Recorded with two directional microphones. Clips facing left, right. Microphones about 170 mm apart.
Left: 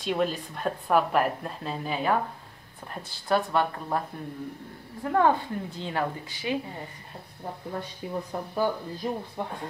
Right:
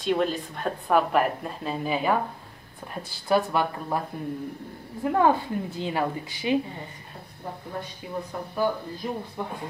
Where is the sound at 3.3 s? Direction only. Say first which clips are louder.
Right 2 dB; 5° right (ahead or behind).